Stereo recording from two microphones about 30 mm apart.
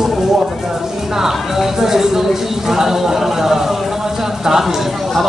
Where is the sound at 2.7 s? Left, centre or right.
Centre.